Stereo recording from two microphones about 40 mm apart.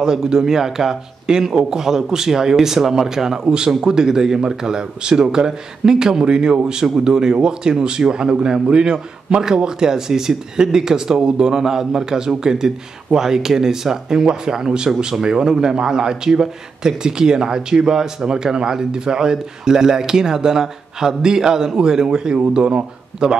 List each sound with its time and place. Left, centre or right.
0.0 s a man's voice: centre